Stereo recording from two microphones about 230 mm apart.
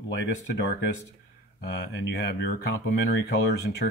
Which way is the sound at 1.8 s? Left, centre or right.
Left.